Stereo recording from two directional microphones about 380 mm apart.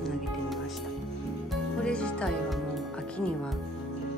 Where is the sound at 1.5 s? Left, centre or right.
Centre.